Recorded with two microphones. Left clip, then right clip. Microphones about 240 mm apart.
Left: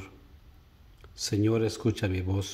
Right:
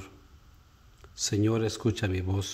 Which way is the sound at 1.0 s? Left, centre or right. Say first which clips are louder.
Even; centre.